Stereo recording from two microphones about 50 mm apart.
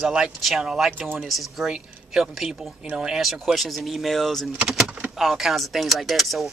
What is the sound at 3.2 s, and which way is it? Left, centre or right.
Speech, centre.